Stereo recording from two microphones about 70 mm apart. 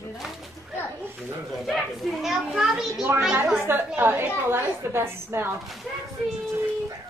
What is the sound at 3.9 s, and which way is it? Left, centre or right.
A woman's voice, right.